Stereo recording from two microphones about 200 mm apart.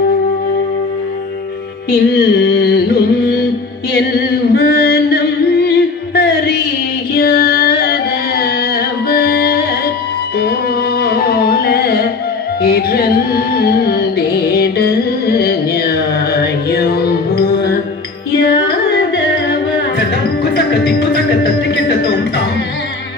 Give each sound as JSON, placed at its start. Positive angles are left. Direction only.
{"t": 1.9, "sound": "music", "side_deg": 50}
{"t": 11.0, "sound": "music", "side_deg": 50}
{"t": 20.5, "sound": "music", "side_deg": 55}